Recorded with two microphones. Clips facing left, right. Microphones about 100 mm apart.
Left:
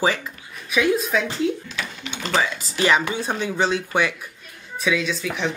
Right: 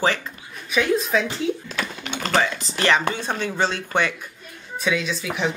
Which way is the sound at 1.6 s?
50° right (ahead or behind).